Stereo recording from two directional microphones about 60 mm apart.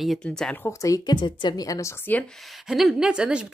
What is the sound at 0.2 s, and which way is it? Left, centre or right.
Speech, centre.